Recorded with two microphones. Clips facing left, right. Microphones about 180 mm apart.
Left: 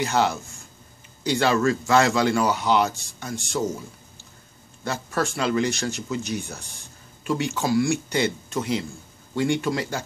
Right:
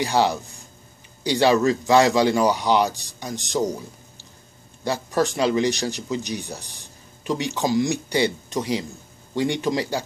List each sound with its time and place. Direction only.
0.0 s speech: 15° right (ahead or behind)
1.4 s speech: 15° right (ahead or behind)
5.1 s speech: 15° right (ahead or behind)